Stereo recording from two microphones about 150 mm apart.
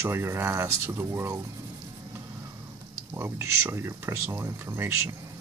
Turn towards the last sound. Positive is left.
turn(degrees=-15)  # may be behind; listen again after turning